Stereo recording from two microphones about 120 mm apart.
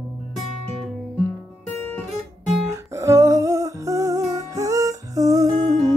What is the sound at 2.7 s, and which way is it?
Music, 25° right (ahead or behind).